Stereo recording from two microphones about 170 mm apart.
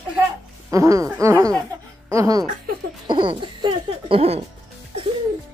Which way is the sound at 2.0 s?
20° right (ahead or behind).